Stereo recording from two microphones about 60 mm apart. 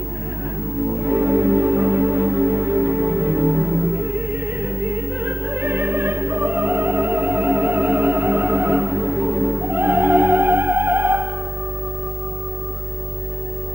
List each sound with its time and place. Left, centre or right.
0.7 s music: right